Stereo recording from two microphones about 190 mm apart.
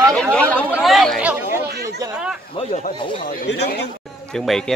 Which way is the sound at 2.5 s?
35° left (ahead or behind).